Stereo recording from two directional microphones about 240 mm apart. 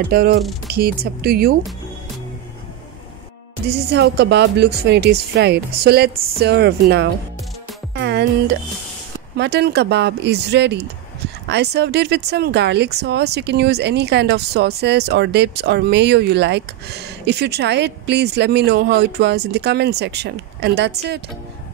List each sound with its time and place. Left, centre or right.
0.1 s speech: right
3.6 s speech: right
7.9 s music: right
9.4 s speech: right